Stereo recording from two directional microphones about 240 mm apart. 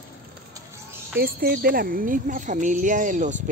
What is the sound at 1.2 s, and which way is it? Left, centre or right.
Speech, right.